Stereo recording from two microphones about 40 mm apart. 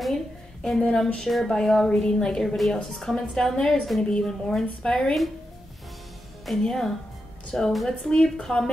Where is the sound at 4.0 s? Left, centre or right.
Left.